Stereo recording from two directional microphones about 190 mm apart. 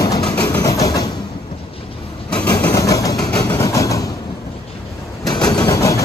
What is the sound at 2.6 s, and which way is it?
Vehicle, 15° left (ahead or behind).